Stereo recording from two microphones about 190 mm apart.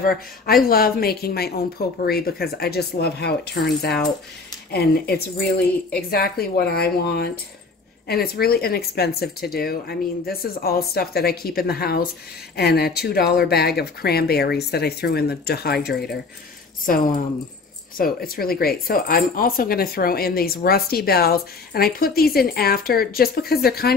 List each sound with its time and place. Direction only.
0.0 s speech: 50° left (ahead or behind)